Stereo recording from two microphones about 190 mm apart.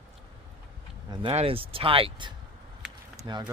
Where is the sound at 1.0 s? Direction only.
30° right (ahead or behind).